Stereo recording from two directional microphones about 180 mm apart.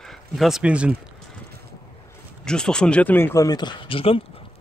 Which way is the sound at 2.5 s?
5° left (ahead or behind).